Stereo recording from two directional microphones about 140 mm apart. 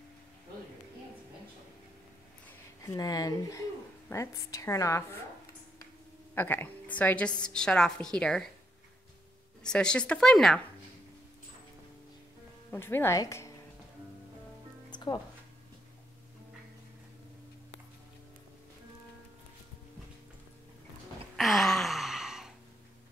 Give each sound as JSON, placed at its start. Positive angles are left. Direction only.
{"t": 2.8, "sound": "a woman's voice", "side_deg": 25}
{"t": 6.3, "sound": "a woman's voice", "side_deg": 15}
{"t": 9.6, "sound": "speech", "side_deg": 5}
{"t": 12.7, "sound": "a woman's voice", "side_deg": 15}
{"t": 14.9, "sound": "music", "side_deg": 30}
{"t": 21.4, "sound": "a sound", "side_deg": 0}